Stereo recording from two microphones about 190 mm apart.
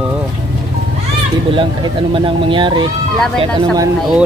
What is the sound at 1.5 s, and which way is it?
Speech, 25° right (ahead or behind).